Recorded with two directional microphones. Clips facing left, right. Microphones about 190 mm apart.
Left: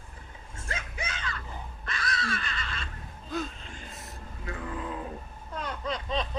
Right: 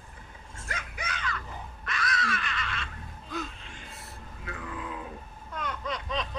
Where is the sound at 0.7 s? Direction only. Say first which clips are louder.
Left 1 dB; 25° left (ahead or behind).